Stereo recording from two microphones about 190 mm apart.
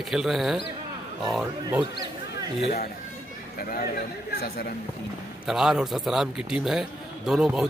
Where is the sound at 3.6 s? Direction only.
50° left (ahead or behind).